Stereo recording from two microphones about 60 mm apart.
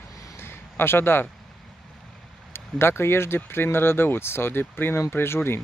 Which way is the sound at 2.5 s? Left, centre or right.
Left.